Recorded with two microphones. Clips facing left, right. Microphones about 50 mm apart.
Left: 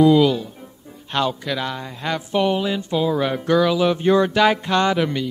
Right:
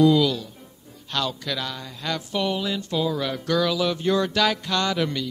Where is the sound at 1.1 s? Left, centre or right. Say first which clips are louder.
Left 5 dB; left.